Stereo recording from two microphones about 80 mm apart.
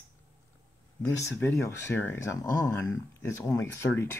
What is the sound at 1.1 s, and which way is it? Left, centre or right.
Speech, left.